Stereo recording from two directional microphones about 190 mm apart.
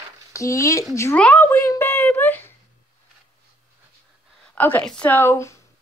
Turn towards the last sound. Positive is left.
turn(degrees=15)  # may be behind; listen again after turning